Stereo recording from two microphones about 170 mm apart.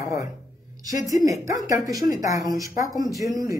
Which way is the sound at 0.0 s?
20° right (ahead or behind).